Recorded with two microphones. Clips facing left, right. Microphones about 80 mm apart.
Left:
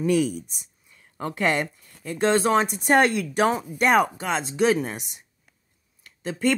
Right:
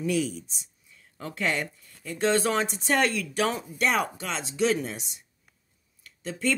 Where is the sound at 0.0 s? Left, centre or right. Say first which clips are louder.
Left 5 dB; left.